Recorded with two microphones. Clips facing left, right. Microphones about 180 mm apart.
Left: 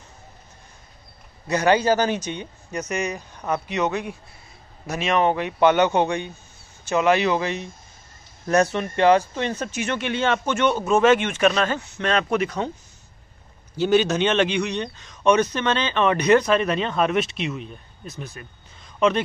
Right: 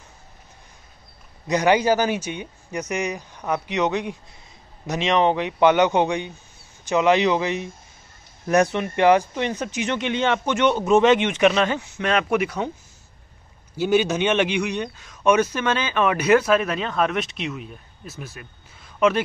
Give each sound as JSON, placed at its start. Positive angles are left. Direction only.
{"t": 1.5, "sound": "speech", "side_deg": -15}
{"t": 13.7, "sound": "speech", "side_deg": -10}